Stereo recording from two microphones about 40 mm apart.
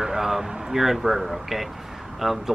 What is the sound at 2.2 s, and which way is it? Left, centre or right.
Speech, centre.